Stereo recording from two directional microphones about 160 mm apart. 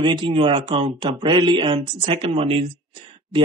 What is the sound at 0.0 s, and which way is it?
A man's voice, 30° right (ahead or behind).